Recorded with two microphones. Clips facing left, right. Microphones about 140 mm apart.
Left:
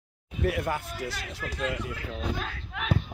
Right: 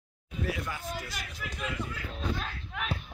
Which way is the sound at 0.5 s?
60° left (ahead or behind).